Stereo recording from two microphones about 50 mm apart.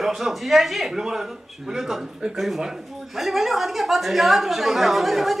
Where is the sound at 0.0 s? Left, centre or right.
Centre.